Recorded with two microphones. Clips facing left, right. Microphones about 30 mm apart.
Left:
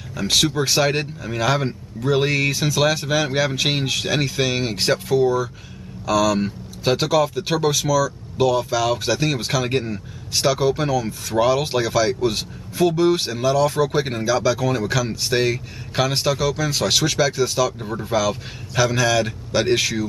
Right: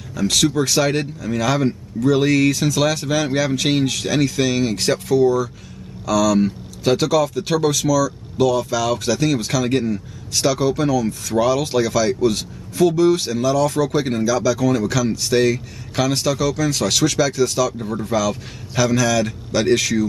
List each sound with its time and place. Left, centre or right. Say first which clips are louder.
0.1 s speech: right 1 dB; centre